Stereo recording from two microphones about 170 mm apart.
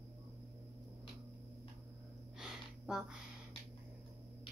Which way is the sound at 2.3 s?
5° right (ahead or behind).